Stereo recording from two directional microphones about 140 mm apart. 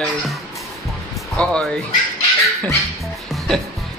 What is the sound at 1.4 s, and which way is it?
Speech, 5° left (ahead or behind).